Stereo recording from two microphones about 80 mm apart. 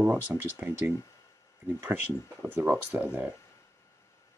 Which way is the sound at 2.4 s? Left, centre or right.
Right.